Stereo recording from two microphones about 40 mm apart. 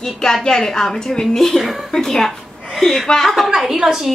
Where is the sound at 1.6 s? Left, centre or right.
Centre.